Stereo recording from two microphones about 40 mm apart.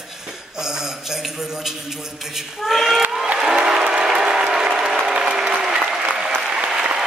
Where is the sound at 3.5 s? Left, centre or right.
Centre.